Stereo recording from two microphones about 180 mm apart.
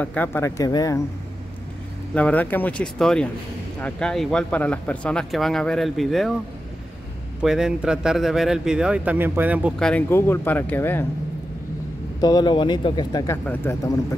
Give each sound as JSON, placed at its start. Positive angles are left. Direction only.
{"t": 0.0, "sound": "speech", "side_deg": 10}
{"t": 2.1, "sound": "speech", "side_deg": 10}
{"t": 7.4, "sound": "speech", "side_deg": -5}
{"t": 9.8, "sound": "speech", "side_deg": 5}
{"t": 12.2, "sound": "speech", "side_deg": 20}